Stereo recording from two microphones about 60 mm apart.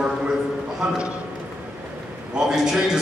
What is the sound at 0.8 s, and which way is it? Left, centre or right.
Speech, centre.